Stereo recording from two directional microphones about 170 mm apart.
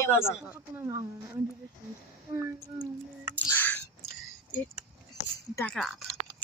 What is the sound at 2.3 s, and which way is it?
Speech, 15° right (ahead or behind).